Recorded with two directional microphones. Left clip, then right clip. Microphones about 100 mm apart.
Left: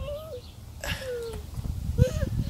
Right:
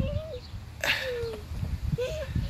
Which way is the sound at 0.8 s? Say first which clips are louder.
Right 7 dB; 70° right (ahead or behind).